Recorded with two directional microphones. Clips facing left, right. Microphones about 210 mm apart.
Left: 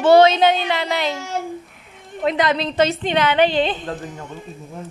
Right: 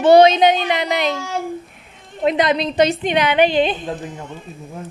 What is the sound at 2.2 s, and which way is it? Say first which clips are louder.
A woman's voice: right 2 dB; 20° right (ahead or behind).